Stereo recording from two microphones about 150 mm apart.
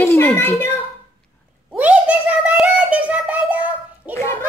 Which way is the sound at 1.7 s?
10° right (ahead or behind).